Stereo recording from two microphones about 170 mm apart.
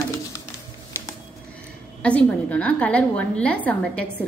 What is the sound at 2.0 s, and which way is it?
A woman's voice, 5° left (ahead or behind).